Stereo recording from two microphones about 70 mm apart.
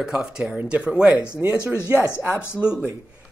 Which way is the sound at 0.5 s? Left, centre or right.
Right.